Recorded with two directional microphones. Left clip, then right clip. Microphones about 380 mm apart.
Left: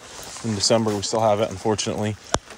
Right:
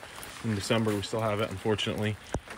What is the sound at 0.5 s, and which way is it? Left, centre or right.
Speech, centre.